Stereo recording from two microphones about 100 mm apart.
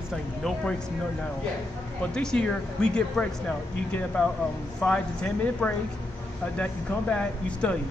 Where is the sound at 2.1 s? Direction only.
10° left (ahead or behind).